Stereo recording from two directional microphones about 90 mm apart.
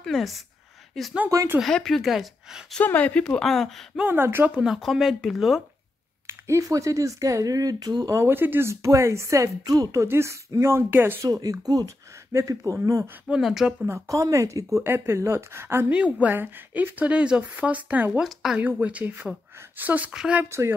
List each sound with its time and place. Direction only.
0.0 s speech: centre (ahead or behind)
2.8 s speech: 15° left (ahead or behind)
4.0 s speech: 25° right (ahead or behind)
4.6 s speech: 5° right (ahead or behind)
6.4 s speech: 35° right (ahead or behind)
8.1 s speech: 25° right (ahead or behind)
10.0 s speech: 30° right (ahead or behind)
11.2 s speech: 40° right (ahead or behind)
13.3 s speech: 5° right (ahead or behind)
13.7 s speech: 30° right (ahead or behind)
15.9 s a woman's voice: 15° right (ahead or behind)
18.2 s speech: 5° right (ahead or behind)
18.6 s a woman's voice: 20° right (ahead or behind)